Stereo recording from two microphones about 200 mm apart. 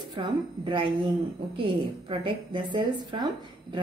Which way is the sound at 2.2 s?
25° right (ahead or behind).